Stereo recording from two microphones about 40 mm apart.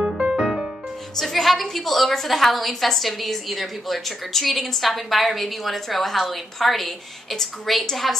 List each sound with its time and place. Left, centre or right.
0.2 s music: centre
1.1 s a woman's voice: centre